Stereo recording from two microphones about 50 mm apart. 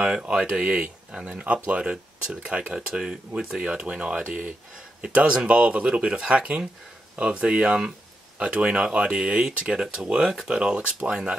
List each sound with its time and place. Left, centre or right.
0.0 s speech: centre